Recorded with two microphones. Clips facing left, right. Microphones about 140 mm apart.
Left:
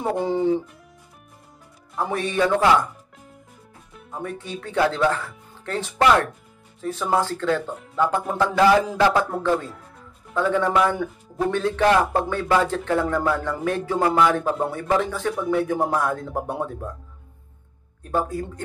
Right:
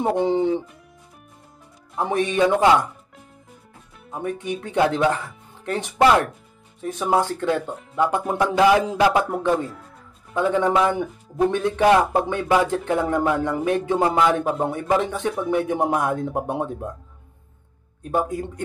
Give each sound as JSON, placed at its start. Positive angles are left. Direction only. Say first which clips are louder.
{"t": 0.2, "sound": "speech", "louder": "left 1 dB", "side_deg": -20}
{"t": 2.0, "sound": "speech", "louder": "right 3 dB", "side_deg": -20}
{"t": 4.1, "sound": "speech", "louder": "right 4 dB", "side_deg": -15}
{"t": 18.0, "sound": "speech", "louder": "right 1 dB", "side_deg": -20}